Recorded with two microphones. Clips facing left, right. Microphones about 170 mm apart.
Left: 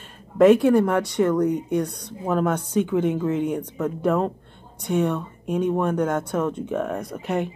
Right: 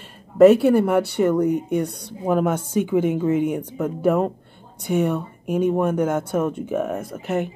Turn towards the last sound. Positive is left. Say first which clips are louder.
# right 1 dB
turn(degrees=-5)  # may be behind; listen again after turning